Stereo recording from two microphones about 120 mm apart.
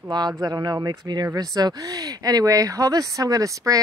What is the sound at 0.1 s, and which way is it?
Speech, 35° right (ahead or behind).